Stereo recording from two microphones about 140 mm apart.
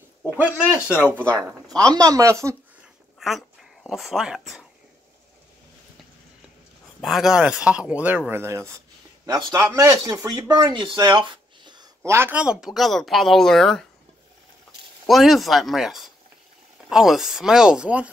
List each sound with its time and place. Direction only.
0.4 s speech: 10° right (ahead or behind)
1.0 s speech: 10° left (ahead or behind)
2.0 s speech: 25° right (ahead or behind)
3.2 s a sound: centre (ahead or behind)
3.9 s speech: centre (ahead or behind)
7.0 s speech: centre (ahead or behind)
15.0 s speech: centre (ahead or behind)